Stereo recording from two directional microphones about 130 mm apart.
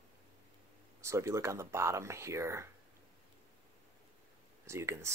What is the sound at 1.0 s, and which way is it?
Speech, 20° right (ahead or behind).